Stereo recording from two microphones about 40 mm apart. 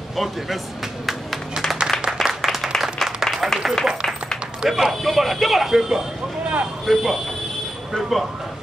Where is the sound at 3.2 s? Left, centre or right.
Centre.